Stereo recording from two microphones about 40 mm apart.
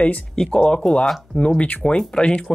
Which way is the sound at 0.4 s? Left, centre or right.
Centre.